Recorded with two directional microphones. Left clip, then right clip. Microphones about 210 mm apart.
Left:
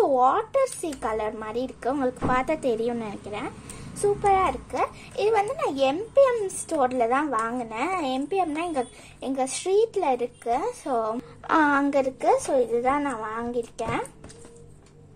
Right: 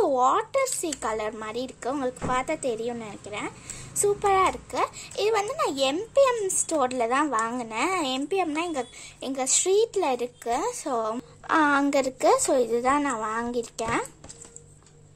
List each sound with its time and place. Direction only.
0.0 s speech: 20° right (ahead or behind)
4.0 s a child's voice: 25° right (ahead or behind)
11.4 s speech: 10° right (ahead or behind)
11.8 s a woman's voice: 25° right (ahead or behind)